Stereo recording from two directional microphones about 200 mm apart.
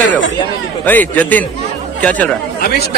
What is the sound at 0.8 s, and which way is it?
Speech, 10° left (ahead or behind).